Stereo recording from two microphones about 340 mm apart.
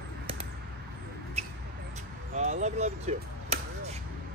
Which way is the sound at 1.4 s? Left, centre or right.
Centre.